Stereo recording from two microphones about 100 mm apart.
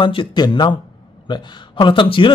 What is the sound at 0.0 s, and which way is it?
A man's voice, 55° left (ahead or behind).